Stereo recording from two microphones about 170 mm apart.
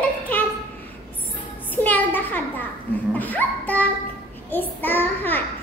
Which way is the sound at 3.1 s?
10° left (ahead or behind).